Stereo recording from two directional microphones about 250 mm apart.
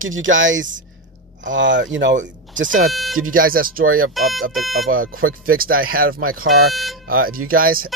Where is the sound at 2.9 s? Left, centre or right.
Centre.